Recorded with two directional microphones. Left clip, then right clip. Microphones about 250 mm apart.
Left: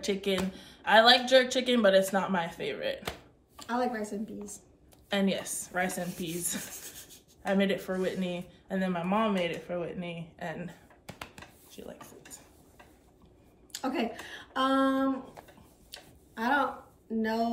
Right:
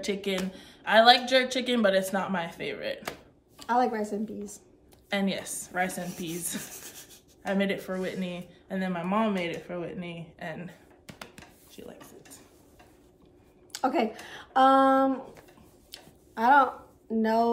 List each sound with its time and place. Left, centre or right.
0.0 s speech: centre
3.5 s a woman's voice: right
5.1 s speech: centre
6.0 s a woman's voice: right
6.3 s speech: centre
6.7 s wheeze: right
7.4 s speech: centre
11.7 s a sound: centre
13.7 s speech: right
15.9 s tick-tock: right
17.2 s a woman's voice: right